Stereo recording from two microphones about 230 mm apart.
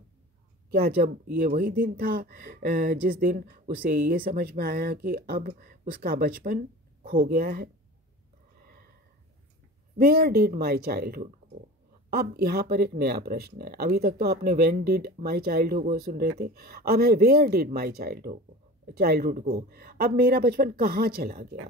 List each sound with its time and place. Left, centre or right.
0.7 s speech: right
9.9 s speech: right